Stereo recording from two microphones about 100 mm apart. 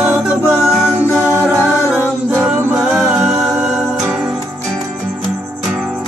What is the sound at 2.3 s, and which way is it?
Music, 20° right (ahead or behind).